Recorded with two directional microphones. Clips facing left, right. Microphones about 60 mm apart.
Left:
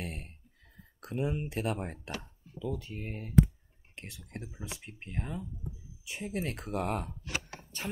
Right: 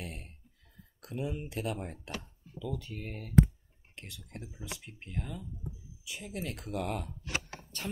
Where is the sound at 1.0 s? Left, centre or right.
Left.